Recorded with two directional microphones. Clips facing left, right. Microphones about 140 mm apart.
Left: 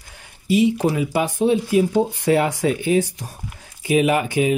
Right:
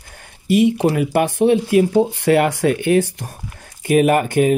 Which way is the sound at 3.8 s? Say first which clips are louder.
Right 3 dB; 50° right (ahead or behind).